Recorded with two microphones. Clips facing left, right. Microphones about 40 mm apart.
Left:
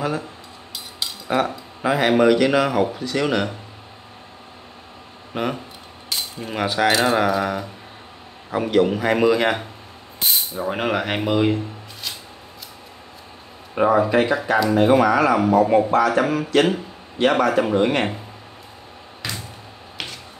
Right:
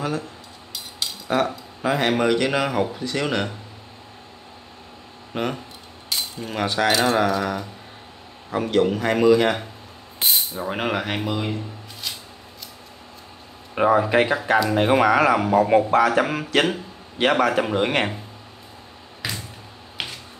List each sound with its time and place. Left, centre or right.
0.9 s speech: centre
5.3 s speech: centre
6.1 s cutlery: centre
6.4 s speech: centre
10.3 s speech: centre
11.1 s speech: centre
13.7 s a sound: centre
14.8 s speech: right
15.5 s a sound: centre
17.3 s speech: centre
17.7 s a sound: centre
19.2 s a sound: centre
20.0 s finger snapping: centre